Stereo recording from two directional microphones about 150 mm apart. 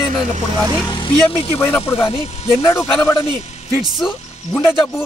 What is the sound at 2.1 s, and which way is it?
Speech, 40° left (ahead or behind).